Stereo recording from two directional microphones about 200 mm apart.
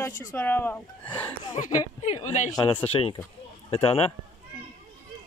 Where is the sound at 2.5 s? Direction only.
25° left (ahead or behind).